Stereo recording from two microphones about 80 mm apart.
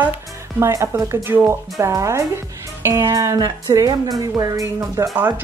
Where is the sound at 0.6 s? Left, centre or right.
Right.